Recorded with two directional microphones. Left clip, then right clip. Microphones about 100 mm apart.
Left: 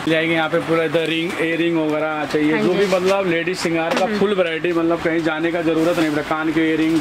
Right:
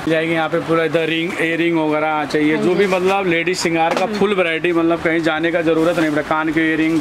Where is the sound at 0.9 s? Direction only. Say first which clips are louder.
Right 1 dB; 55° right (ahead or behind).